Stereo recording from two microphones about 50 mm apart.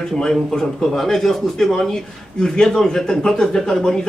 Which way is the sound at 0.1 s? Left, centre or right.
Centre.